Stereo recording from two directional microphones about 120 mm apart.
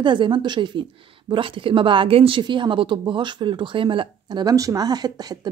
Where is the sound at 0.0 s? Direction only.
40° right (ahead or behind).